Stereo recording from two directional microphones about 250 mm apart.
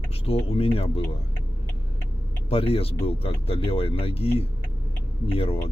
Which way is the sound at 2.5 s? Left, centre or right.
Left.